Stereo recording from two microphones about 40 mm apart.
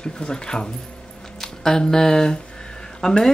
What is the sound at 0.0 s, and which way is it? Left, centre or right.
Speech, left.